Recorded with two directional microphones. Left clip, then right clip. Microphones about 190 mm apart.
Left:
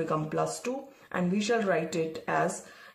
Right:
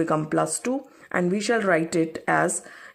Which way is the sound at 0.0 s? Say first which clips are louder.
Right 6 dB; 40° right (ahead or behind).